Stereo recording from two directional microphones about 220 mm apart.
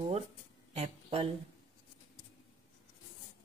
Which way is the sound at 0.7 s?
30° right (ahead or behind).